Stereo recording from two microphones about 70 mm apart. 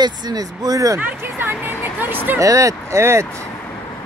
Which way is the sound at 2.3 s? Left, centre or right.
Right.